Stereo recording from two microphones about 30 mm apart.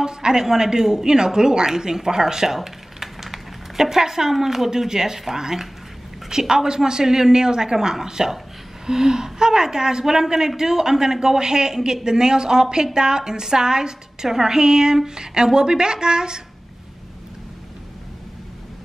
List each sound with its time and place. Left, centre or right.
0.0 s a woman's voice: right
2.5 s a sound: centre
4.3 s a woman's voice: centre